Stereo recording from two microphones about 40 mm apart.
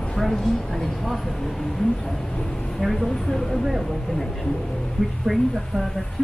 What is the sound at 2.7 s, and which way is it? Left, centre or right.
Speech, centre.